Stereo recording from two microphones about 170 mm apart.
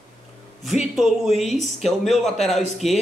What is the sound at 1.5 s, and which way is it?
Speech, 45° left (ahead or behind).